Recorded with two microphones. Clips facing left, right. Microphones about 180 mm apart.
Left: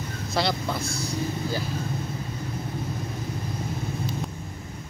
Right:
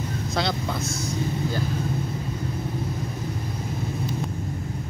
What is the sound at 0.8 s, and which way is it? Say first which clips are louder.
Speech: right 2 dB; 20° right (ahead or behind).